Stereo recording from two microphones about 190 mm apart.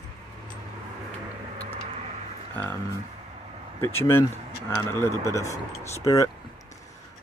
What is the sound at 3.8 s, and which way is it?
Speech, 15° left (ahead or behind).